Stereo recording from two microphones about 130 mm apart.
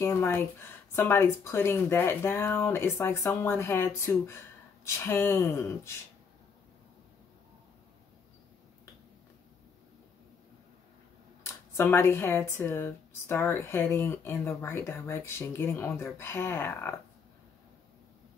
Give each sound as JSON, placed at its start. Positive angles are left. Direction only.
{"t": 0.0, "sound": "speech", "side_deg": 20}
{"t": 11.4, "sound": "speech", "side_deg": 20}